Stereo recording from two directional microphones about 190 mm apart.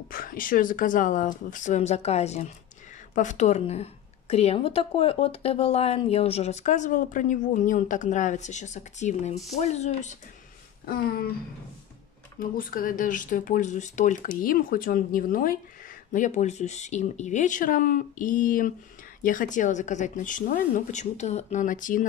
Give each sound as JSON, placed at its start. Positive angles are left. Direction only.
{"t": 0.1, "sound": "a woman's voice", "side_deg": 45}
{"t": 12.4, "sound": "a woman's voice", "side_deg": 45}